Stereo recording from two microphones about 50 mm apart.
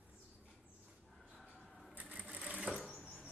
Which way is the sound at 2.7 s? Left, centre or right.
Left.